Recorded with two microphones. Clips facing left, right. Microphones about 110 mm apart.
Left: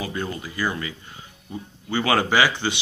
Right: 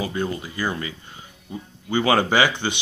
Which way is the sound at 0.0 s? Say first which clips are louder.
Right 3 dB; 25° right (ahead or behind).